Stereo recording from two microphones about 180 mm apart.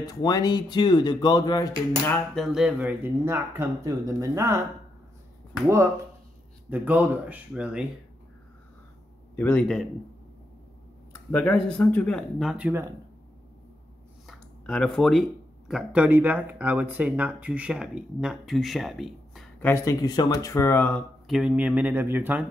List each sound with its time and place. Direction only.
0.0 s speech: 20° left (ahead or behind)
2.0 s speech: centre (ahead or behind); by 4.6 s 20° right (ahead or behind)
6.7 s speech: 10° right (ahead or behind)
9.3 s speech: 10° left (ahead or behind)
11.3 s speech: 5° left (ahead or behind); by 12.9 s 10° right (ahead or behind)
14.2 s a sound: 5° left (ahead or behind)
15.7 s speech: 5° right (ahead or behind)
19.6 s speech: 15° left (ahead or behind)
21.3 s speech: 5° right (ahead or behind)